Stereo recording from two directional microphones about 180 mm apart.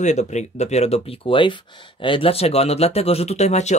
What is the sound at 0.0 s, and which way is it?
Speech, 40° left (ahead or behind).